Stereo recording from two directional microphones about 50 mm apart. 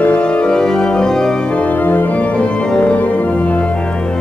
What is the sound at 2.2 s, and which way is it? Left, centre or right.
Organ, left.